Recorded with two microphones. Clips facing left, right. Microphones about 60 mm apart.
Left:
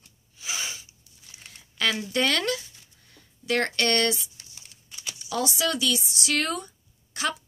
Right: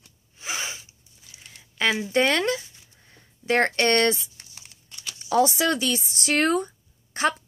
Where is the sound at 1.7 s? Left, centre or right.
Right.